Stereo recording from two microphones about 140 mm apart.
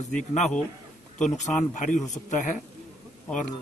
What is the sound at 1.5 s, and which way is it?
Speech, 60° left (ahead or behind).